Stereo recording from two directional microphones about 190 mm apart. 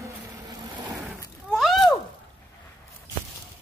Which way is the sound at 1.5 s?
Centre (ahead or behind).